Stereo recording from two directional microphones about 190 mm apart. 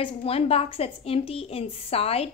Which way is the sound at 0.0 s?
30° left (ahead or behind).